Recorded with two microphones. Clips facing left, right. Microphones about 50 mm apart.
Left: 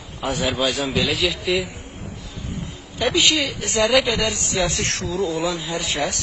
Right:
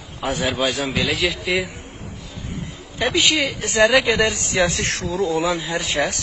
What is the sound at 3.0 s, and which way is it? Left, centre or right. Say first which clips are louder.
Speech: even; centre.